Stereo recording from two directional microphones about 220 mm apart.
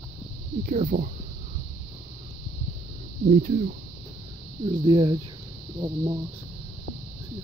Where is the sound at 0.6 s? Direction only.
40° right (ahead or behind).